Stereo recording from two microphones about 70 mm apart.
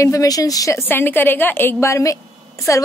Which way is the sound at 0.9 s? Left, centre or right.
Left.